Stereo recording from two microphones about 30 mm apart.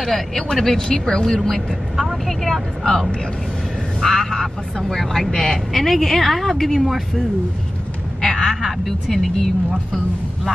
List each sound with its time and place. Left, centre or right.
0.0 s a woman's voice: centre
8.2 s a sound: centre
9.1 s speech: centre